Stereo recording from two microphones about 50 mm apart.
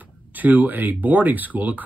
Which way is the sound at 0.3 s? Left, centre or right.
Right.